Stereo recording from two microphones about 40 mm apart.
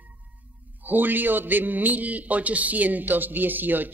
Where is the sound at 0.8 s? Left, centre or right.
Right.